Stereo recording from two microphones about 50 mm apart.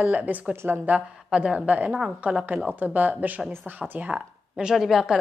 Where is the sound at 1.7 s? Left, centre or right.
Right.